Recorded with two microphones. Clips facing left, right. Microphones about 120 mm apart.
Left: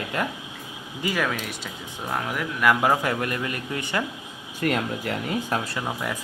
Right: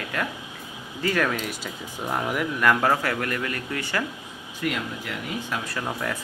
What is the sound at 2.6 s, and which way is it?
A man's voice, 10° left (ahead or behind).